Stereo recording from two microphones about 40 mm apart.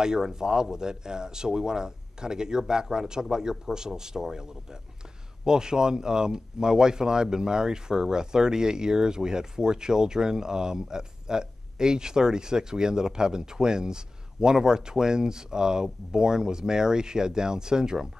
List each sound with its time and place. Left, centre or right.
0.0 s speech: centre